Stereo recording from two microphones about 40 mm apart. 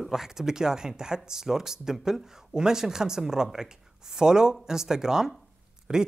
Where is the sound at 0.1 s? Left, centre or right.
Centre.